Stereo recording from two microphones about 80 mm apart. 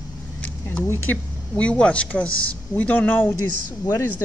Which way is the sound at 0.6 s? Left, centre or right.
Left.